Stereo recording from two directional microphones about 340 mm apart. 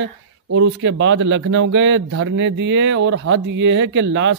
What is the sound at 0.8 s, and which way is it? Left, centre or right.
Speech, right.